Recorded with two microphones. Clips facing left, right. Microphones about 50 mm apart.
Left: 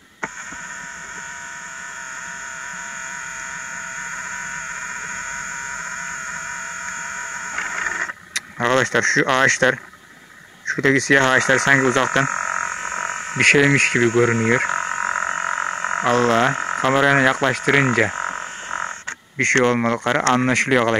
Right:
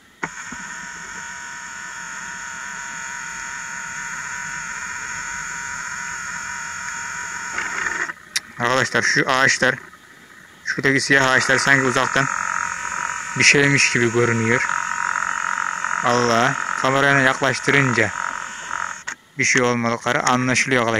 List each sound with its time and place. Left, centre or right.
7.2 s music: left
8.5 s a sound: centre
8.9 s speech: centre
10.8 s speech: centre
12.3 s frog: left
13.4 s frog: centre
16.7 s speech: centre
17.8 s frog: centre
19.4 s speech: centre